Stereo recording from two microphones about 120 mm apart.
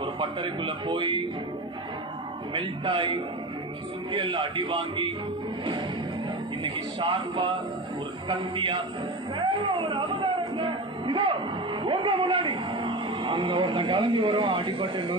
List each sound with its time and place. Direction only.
0.0 s a man's voice: 40° right (ahead or behind)
2.5 s a man's voice: 45° right (ahead or behind)
6.6 s a man's voice: 45° right (ahead or behind)
9.4 s music: 35° right (ahead or behind)
11.8 s speech: 45° right (ahead or behind)